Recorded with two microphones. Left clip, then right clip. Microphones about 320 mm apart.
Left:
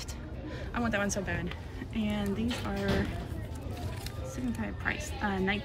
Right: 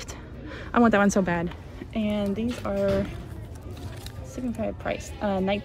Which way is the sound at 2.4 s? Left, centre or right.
Left.